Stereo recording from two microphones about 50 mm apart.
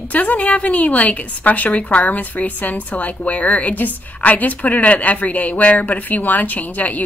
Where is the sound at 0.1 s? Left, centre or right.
Left.